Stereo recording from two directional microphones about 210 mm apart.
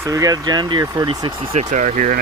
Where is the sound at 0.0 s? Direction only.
15° right (ahead or behind).